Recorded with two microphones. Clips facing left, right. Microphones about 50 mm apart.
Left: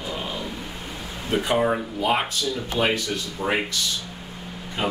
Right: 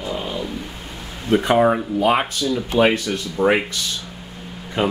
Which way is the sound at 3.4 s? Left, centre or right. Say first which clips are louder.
Right 10 dB; right.